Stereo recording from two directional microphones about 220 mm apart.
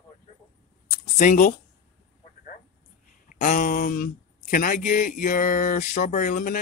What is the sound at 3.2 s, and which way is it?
Speech, 35° left (ahead or behind).